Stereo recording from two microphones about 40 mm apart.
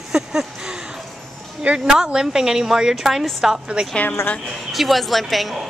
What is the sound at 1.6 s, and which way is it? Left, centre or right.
Speech, right.